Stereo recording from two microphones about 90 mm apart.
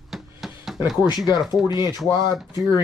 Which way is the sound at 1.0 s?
50° left (ahead or behind).